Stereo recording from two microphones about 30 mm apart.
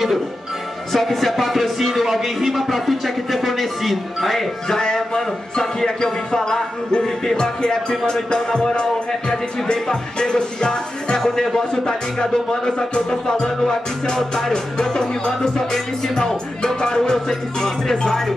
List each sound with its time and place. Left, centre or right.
0.9 s speech: centre
4.6 s a man's voice: left
6.0 s music: centre
18.0 s speech: centre